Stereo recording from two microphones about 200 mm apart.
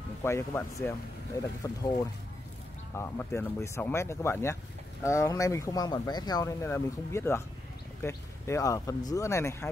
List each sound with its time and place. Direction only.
0.2 s speech: 15° left (ahead or behind)